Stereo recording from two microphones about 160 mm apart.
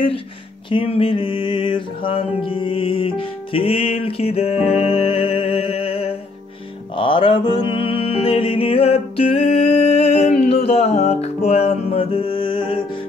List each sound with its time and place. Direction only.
0.7 s mantra: 35° left (ahead or behind)
7.0 s music: 30° left (ahead or behind)